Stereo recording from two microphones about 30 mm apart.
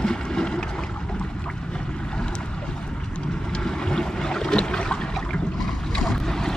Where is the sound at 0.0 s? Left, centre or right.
Left.